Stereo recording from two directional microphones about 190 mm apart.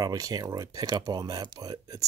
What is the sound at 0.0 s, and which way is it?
Speech, 20° right (ahead or behind).